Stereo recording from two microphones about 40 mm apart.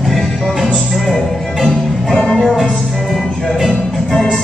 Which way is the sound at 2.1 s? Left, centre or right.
Centre.